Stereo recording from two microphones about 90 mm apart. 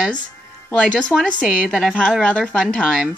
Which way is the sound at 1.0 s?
10° left (ahead or behind).